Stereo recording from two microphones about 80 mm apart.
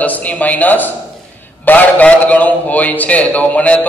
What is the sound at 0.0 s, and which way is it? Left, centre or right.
A man's voice, centre.